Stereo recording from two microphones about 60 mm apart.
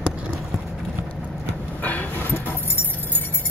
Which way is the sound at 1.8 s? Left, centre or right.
Left.